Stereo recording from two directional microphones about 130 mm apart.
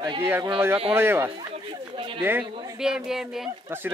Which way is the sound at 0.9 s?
15° right (ahead or behind).